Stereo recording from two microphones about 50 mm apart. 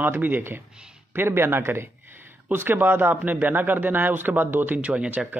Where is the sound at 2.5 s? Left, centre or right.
Right.